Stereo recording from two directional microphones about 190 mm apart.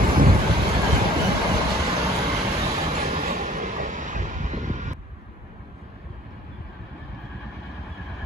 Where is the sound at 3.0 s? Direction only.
40° right (ahead or behind).